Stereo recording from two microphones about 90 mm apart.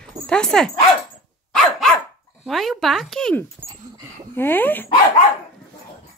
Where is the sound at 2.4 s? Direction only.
Centre (ahead or behind).